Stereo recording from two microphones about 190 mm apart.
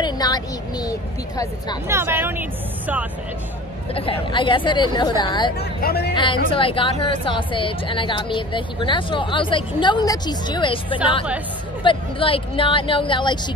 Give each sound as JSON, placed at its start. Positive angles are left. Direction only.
{"t": 0.0, "sound": "speech", "side_deg": 20}
{"t": 1.9, "sound": "speech", "side_deg": -10}
{"t": 3.9, "sound": "speech", "side_deg": 30}
{"t": 5.6, "sound": "speech", "side_deg": 55}
{"t": 6.1, "sound": "speech", "side_deg": 25}